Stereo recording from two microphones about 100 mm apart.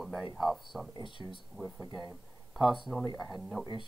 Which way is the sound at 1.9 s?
40° left (ahead or behind).